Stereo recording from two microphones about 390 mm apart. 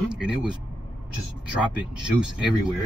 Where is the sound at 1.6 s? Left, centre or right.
Centre.